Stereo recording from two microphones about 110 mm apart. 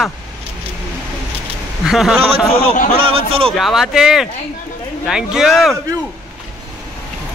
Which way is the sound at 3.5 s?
Centre (ahead or behind).